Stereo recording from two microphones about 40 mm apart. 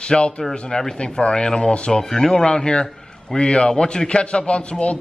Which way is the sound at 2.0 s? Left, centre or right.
Centre.